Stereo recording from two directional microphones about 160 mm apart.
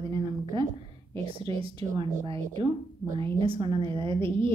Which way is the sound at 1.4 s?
35° right (ahead or behind).